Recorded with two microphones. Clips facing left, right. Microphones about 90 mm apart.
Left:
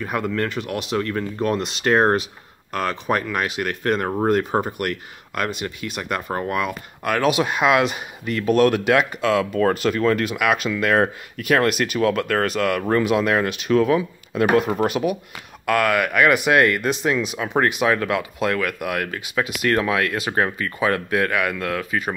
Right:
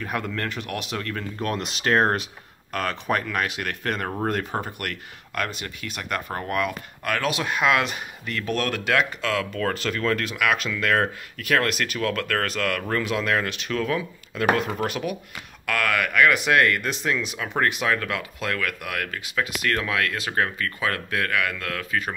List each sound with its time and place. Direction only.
0.0 s speech: 5° left (ahead or behind)